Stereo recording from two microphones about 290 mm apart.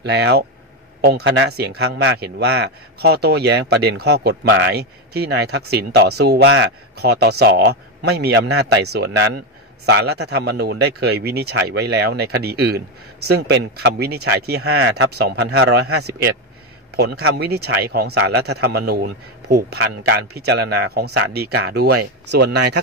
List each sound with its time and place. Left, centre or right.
0.0 s a man's voice: right
16.9 s a man's voice: right
18.4 s a man's voice: right
18.7 s a man's voice: right